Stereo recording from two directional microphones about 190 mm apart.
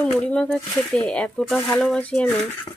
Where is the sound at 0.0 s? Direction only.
5° left (ahead or behind).